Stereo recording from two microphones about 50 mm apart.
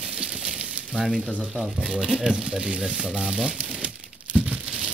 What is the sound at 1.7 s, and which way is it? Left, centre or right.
Speech, centre.